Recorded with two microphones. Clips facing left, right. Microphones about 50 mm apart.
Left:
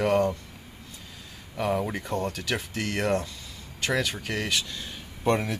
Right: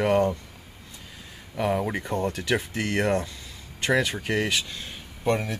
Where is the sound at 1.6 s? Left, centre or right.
Centre.